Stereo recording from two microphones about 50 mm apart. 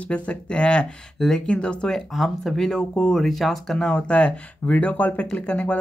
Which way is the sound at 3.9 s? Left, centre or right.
Left.